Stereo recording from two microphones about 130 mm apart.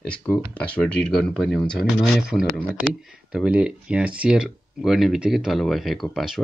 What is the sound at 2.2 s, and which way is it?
Speech, 10° right (ahead or behind).